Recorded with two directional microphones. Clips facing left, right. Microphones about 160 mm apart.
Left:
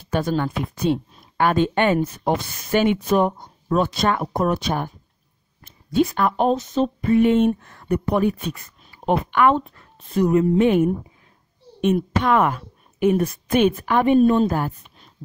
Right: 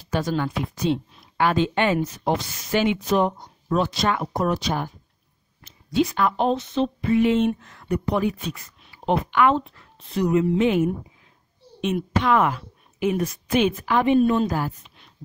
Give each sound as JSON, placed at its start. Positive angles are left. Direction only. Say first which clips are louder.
{"t": 0.0, "sound": "speech", "louder": "left 2 dB", "side_deg": 55}
{"t": 5.9, "sound": "a woman's voice", "louder": "left 2 dB", "side_deg": 50}